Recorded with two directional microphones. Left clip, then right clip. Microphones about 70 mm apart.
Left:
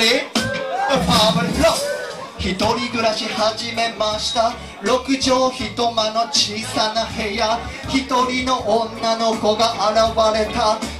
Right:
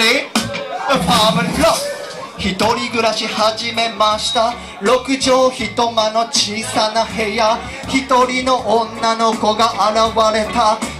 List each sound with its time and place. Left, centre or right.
0.0 s music: right
2.4 s speech: right